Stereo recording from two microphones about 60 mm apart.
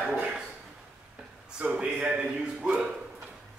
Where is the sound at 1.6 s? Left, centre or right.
Centre.